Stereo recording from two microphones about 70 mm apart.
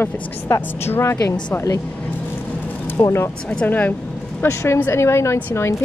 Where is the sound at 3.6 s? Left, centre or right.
Left.